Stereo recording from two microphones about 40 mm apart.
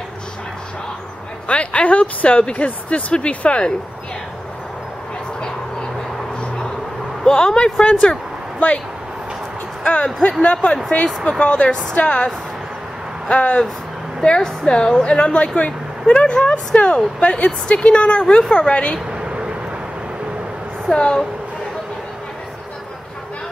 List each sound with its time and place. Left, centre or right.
1.5 s speech: left
7.2 s speech: left
7.8 s speech: left
9.8 s speech: left
13.3 s a woman's voice: left
18.7 s speech: left
19.1 s vehicle: right
20.9 s speech: centre